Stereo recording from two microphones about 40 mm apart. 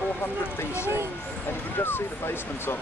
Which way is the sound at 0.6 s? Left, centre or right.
Left.